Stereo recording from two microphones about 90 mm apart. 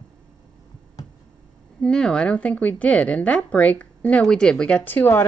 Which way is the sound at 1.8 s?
10° left (ahead or behind).